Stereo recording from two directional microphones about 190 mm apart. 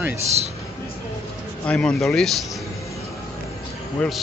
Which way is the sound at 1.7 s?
5° left (ahead or behind).